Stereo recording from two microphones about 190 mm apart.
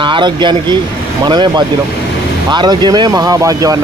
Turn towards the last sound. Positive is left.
turn(degrees=-20)  # may be behind; listen again after turning